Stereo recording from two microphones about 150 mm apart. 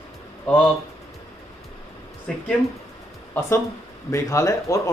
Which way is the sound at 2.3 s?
5° left (ahead or behind).